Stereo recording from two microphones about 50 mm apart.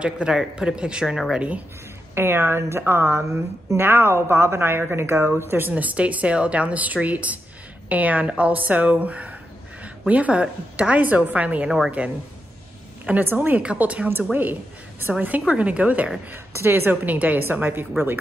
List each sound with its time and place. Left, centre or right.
0.0 s a woman's voice: centre
2.1 s a woman's voice: right
5.7 s a woman's voice: right
13.2 s a woman's voice: right
13.6 s a woman's voice: right
16.5 s a woman's voice: right
16.9 s a woman's voice: right